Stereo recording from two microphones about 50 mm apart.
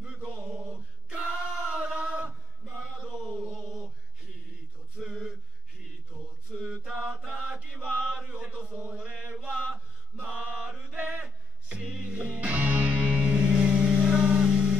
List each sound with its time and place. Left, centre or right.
0.0 s music: right
0.3 s music: right
1.1 s a sound: right
5.0 s male singing: right
6.5 s chant: right
9.1 s mantra: right
11.0 s a sound: right
11.8 s music: centre
12.1 s music: right